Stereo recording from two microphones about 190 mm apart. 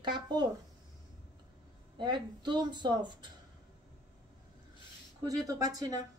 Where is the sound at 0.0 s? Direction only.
25° right (ahead or behind).